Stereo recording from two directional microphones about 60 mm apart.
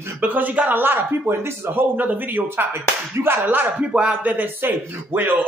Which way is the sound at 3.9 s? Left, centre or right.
Centre.